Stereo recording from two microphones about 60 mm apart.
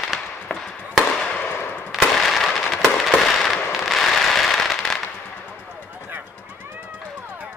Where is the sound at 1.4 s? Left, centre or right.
Left.